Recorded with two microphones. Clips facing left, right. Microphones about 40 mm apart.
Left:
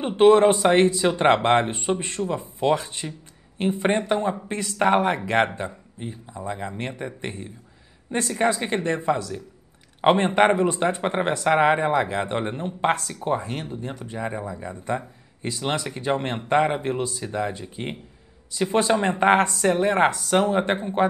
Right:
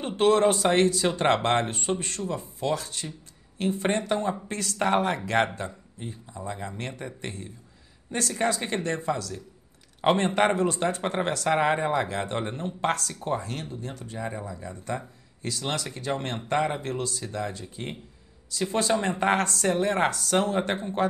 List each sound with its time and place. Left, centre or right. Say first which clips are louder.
0.0 s speech: left 6 dB; left